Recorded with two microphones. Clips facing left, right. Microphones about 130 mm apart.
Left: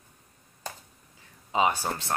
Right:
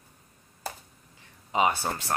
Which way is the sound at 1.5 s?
15° left (ahead or behind).